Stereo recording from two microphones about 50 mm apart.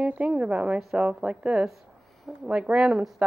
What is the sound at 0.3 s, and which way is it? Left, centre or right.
Speech, right.